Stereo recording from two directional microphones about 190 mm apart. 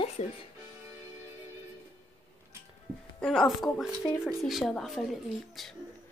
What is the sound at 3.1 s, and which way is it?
Speech, 5° left (ahead or behind).